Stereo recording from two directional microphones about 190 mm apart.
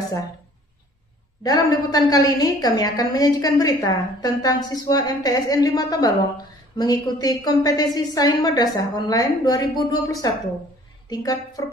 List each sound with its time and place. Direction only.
1.4 s a woman's voice: 20° left (ahead or behind)